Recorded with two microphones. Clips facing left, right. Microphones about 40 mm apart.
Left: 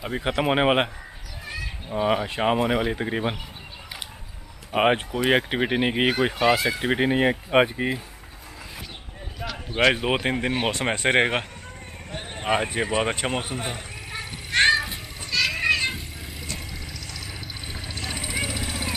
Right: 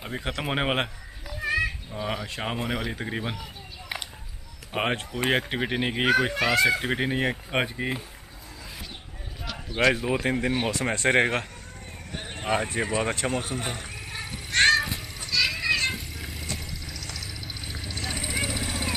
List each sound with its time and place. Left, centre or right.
0.1 s speech: centre
1.4 s a sound: right
1.9 s speech: left
4.7 s speech: centre
9.8 s speech: left
10.2 s speech: left
11.0 s speech: centre
12.4 s speech: left
14.5 s children playing: centre
15.7 s a sound: centre
17.6 s vehicle: centre
17.9 s vehicle: centre